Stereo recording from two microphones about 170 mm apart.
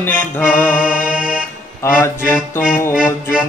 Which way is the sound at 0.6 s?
5° right (ahead or behind).